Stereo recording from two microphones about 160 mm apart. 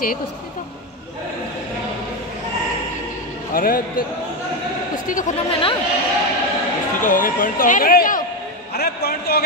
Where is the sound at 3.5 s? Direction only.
65° left (ahead or behind).